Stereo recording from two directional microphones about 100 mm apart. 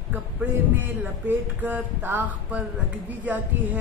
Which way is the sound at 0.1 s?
20° right (ahead or behind).